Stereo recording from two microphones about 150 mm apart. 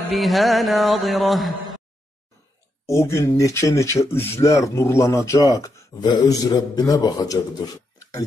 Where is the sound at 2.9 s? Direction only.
15° left (ahead or behind).